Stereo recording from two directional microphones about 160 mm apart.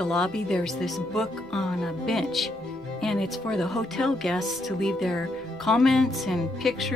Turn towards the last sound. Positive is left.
turn(degrees=0)  # may be behind; listen again after turning